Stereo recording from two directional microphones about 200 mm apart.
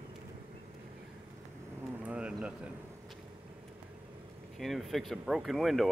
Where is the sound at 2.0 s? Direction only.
5° right (ahead or behind).